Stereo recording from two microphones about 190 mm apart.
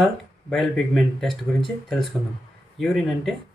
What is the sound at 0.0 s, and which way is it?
Speech, centre (ahead or behind).